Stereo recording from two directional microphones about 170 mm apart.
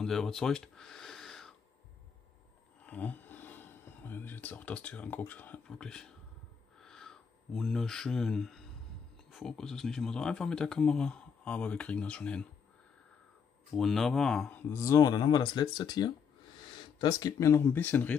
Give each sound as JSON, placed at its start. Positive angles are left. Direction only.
{"t": 0.0, "sound": "a sound", "side_deg": 0}
{"t": 2.8, "sound": "speech", "side_deg": 10}
{"t": 13.7, "sound": "speech", "side_deg": 0}
{"t": 14.7, "sound": "speech", "side_deg": 20}